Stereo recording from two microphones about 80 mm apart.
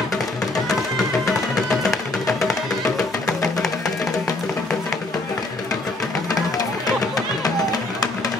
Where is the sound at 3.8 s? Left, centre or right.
Left.